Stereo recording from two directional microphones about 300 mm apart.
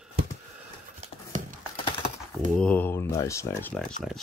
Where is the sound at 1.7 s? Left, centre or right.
Centre.